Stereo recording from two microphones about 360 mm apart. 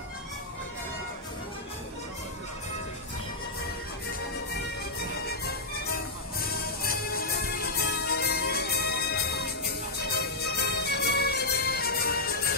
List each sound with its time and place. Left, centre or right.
5.2 s music: left